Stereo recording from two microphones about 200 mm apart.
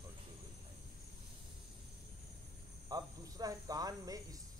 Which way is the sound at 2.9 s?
20° right (ahead or behind).